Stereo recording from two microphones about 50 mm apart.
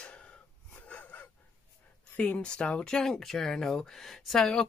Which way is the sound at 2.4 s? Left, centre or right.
Centre.